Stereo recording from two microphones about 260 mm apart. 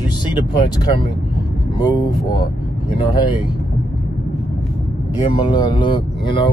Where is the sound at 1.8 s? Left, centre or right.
Centre.